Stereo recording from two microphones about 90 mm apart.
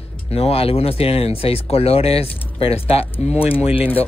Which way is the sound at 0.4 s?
90° left.